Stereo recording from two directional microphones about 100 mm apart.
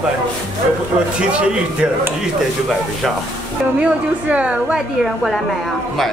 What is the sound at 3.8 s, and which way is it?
A woman's voice, 10° right (ahead or behind).